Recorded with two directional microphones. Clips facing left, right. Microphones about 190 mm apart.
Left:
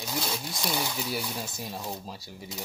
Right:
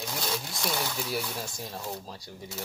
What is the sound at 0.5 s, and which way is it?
Speech, 15° left (ahead or behind).